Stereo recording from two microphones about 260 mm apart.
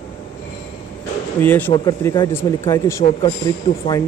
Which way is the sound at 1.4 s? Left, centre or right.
Centre.